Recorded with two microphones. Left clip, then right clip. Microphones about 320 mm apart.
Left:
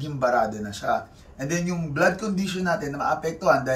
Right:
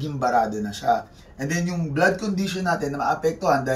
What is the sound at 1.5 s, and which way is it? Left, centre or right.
Speech, centre.